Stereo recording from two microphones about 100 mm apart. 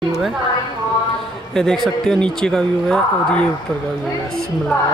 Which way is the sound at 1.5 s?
5° left (ahead or behind).